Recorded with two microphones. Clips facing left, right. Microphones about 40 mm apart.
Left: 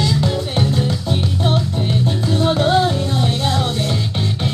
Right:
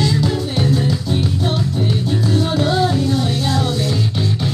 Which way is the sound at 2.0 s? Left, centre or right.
Left.